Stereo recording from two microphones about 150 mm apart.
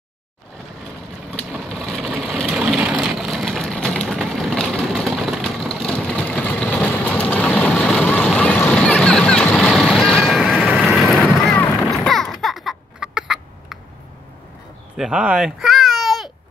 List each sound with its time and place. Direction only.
1.3 s a sound: 5° left (ahead or behind)
2.3 s vehicle: centre (ahead or behind)
15.0 s baby cry: 5° right (ahead or behind)